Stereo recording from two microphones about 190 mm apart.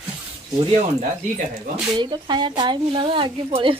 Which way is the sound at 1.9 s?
25° right (ahead or behind).